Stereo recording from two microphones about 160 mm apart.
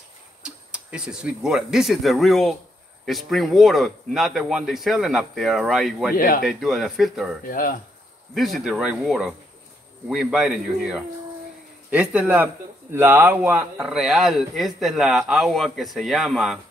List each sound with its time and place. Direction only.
0.4 s speech: 5° right (ahead or behind)
6.1 s speech: 60° left (ahead or behind)
6.4 s speech: centre (ahead or behind)
7.4 s speech: 60° left (ahead or behind)
8.4 s speech: centre (ahead or behind)